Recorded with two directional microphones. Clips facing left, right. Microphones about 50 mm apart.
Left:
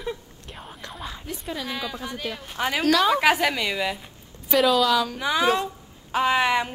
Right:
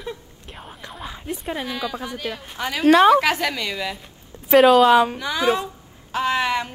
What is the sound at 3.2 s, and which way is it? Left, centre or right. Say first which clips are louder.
Speech: left 1 dB; centre.